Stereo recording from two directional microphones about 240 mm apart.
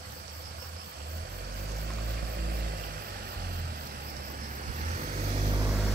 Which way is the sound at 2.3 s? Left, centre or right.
Right.